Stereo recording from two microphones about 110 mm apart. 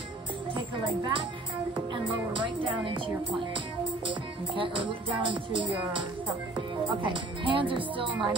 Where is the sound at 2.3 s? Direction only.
50° right (ahead or behind).